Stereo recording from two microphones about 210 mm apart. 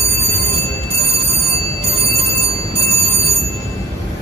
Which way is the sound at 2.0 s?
25° right (ahead or behind).